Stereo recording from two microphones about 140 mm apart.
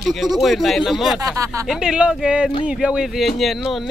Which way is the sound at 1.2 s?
25° right (ahead or behind).